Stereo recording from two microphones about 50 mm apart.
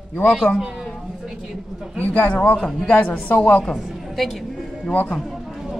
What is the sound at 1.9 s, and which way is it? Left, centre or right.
A woman's voice, left.